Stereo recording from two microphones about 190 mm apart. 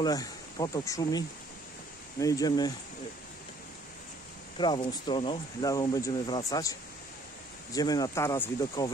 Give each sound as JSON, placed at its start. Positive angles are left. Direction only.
{"t": 0.0, "sound": "speech", "side_deg": 20}
{"t": 4.6, "sound": "speech", "side_deg": 25}